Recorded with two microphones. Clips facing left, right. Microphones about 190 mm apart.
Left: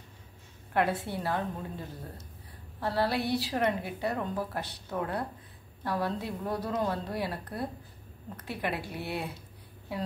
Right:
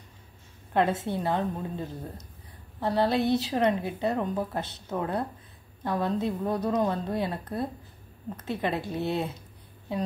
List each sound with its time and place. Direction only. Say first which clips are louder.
0.7 s a woman's voice: right 3 dB; 20° right (ahead or behind)